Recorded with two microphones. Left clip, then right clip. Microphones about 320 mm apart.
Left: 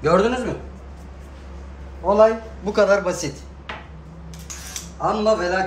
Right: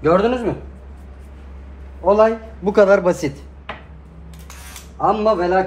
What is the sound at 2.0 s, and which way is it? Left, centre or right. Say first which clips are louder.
Speech: right 1 dB; right.